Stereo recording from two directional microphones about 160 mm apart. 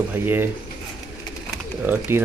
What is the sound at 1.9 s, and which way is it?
Speech, 15° right (ahead or behind).